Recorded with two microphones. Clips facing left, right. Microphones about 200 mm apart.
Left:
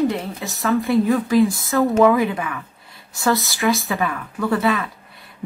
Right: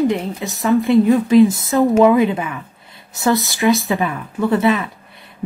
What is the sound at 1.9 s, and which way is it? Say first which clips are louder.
A woman's voice: right 3 dB; 20° right (ahead or behind).